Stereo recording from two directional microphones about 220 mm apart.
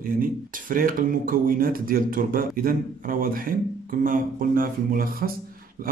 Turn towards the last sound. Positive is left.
turn(degrees=-40)  # may be behind; listen again after turning